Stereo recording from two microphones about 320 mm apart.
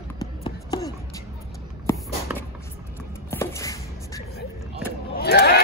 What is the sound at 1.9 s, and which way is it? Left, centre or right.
Walk, centre.